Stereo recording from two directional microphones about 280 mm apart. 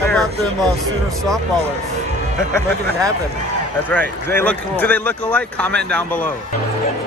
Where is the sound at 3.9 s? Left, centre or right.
Centre.